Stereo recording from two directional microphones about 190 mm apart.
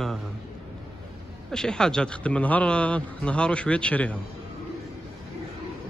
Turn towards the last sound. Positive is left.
turn(degrees=5)  # may be behind; listen again after turning